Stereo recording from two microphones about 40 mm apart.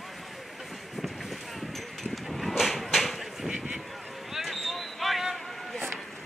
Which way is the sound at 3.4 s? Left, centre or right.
Right.